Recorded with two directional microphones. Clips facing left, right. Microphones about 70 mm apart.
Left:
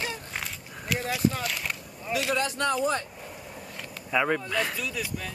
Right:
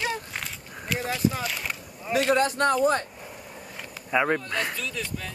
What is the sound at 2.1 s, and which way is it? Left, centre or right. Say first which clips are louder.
Speech: right 5 dB; right.